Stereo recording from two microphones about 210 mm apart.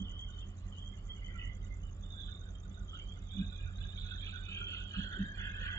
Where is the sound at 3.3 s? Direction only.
15° left (ahead or behind).